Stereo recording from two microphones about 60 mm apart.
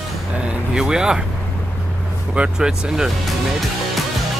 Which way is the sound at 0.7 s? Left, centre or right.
Centre.